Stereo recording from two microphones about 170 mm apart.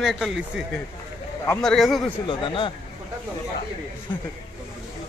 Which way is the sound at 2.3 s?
30° left (ahead or behind).